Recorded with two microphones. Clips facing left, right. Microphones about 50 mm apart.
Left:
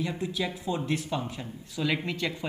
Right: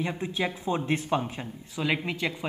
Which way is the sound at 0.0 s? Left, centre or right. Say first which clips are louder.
Right 1 dB; right.